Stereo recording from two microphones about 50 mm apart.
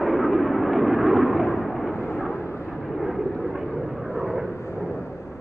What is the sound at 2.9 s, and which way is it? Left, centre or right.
Vehicle, centre.